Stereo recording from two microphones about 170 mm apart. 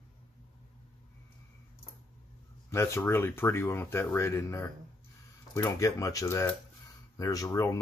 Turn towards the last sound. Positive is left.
turn(degrees=20)  # may be behind; listen again after turning